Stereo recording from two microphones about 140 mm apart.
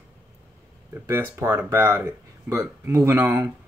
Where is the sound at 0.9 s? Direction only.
15° right (ahead or behind).